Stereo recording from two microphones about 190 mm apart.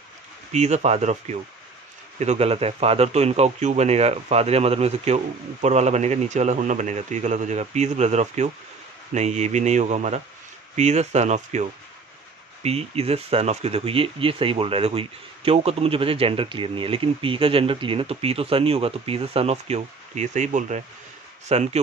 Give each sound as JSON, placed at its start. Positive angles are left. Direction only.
{"t": 0.5, "sound": "speech", "side_deg": -35}
{"t": 12.6, "sound": "speech", "side_deg": -35}